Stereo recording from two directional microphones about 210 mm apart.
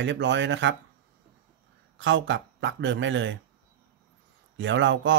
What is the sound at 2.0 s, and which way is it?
Speech, 60° right (ahead or behind).